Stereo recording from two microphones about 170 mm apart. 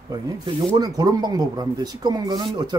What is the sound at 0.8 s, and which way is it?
Speech, 20° right (ahead or behind).